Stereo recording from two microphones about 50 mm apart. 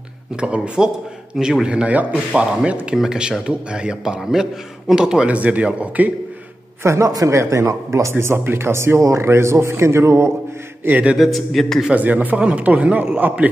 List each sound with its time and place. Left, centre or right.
0.4 s a man's voice: centre
1.9 s a man's voice: right; by 5.3 s centre
5.3 s speech: right
6.8 s speech: right
10.8 s speech: right
11.1 s a man's voice: centre
11.9 s a man's voice: right